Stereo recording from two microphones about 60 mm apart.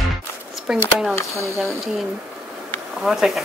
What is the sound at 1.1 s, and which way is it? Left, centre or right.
Speech, left.